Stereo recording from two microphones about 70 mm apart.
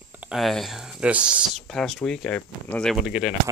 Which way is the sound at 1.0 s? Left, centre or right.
Centre.